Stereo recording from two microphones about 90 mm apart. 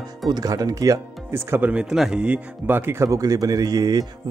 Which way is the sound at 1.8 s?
5° right (ahead or behind).